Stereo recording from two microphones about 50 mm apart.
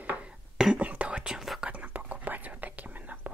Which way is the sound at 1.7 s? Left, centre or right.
Right.